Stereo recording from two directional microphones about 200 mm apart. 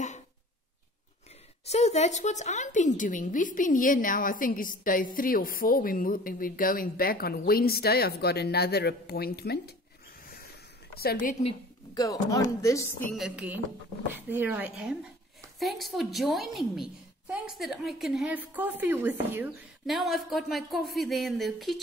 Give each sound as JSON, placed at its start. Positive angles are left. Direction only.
{"t": 1.7, "sound": "a woman's voice", "side_deg": 35}
{"t": 10.2, "sound": "a sound", "side_deg": 50}
{"t": 11.0, "sound": "a woman's voice", "side_deg": 50}
{"t": 11.4, "sound": "a woman's voice", "side_deg": 20}
{"t": 13.2, "sound": "a woman's voice", "side_deg": -5}